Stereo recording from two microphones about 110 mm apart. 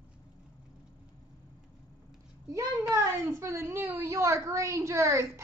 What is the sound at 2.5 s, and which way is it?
A woman's voice, 25° right (ahead or behind).